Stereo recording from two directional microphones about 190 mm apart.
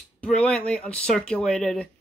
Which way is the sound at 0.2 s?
5° left (ahead or behind).